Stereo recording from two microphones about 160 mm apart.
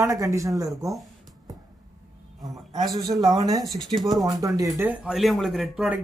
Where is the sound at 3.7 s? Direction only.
5° left (ahead or behind).